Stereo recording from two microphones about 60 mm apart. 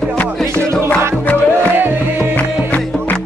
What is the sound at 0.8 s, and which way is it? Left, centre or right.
Music, left.